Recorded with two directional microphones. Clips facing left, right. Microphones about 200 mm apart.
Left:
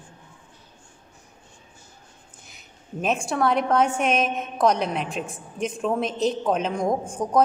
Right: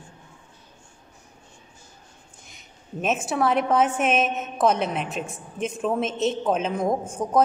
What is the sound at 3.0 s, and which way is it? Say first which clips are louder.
A woman's voice: even; 5° right (ahead or behind).